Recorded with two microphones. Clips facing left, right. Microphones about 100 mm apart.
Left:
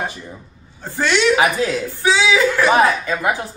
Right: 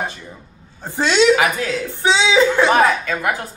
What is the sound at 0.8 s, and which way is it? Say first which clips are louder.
Speech: right 2 dB; 20° right (ahead or behind).